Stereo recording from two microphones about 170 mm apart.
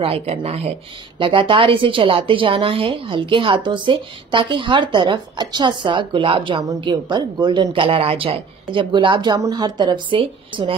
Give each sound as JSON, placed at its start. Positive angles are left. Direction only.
{"t": 0.0, "sound": "a woman's voice", "side_deg": -35}